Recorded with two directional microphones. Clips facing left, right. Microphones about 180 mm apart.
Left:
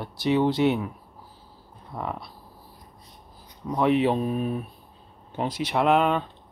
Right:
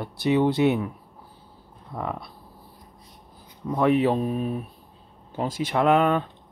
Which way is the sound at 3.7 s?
50° right (ahead or behind).